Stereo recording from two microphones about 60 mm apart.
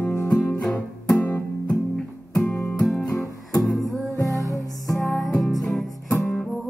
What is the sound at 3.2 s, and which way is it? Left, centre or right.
Guitar, left.